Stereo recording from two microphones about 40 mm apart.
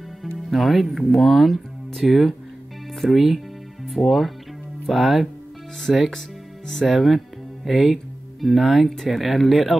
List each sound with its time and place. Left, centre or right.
0.2 s music: centre
1.1 s speech: centre